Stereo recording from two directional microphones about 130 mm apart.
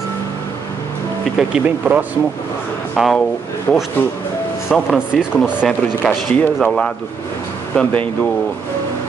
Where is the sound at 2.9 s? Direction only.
5° left (ahead or behind).